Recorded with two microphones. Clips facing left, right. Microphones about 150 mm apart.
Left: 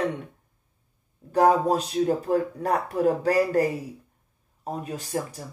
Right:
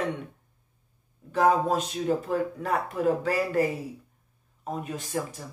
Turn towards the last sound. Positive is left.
turn(degrees=35)  # may be behind; listen again after turning